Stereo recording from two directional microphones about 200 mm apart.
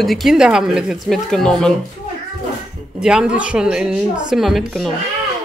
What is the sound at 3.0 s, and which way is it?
Speech, 5° right (ahead or behind).